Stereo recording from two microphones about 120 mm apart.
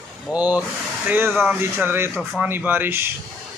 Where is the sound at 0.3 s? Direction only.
10° right (ahead or behind).